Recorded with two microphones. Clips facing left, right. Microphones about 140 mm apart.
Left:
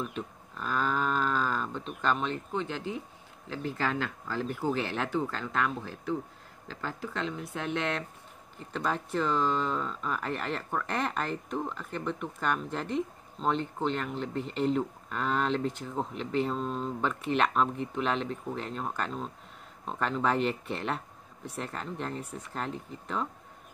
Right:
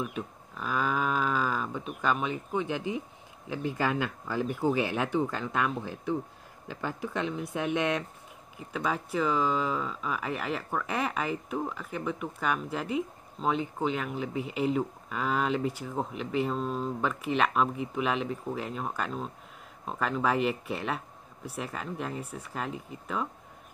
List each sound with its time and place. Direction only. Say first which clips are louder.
0.0 s speech: right 1 dB; 5° right (ahead or behind)